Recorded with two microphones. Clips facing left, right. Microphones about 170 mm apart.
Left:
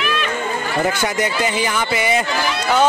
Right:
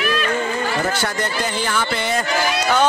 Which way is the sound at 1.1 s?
10° left (ahead or behind).